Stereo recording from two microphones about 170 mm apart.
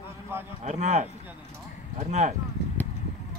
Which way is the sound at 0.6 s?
40° right (ahead or behind).